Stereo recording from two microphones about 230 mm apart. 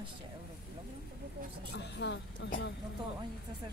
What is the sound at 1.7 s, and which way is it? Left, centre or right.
A woman's voice, left.